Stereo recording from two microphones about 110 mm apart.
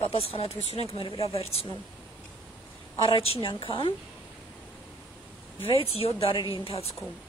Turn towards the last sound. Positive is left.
turn(degrees=65)  # may be behind; listen again after turning